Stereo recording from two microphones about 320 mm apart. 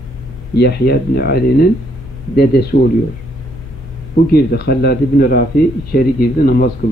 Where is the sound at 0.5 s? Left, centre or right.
Left.